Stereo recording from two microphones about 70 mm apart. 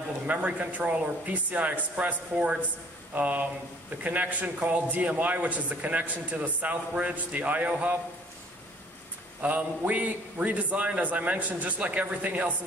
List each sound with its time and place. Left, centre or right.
0.3 s a man's voice: centre
9.4 s a man's voice: right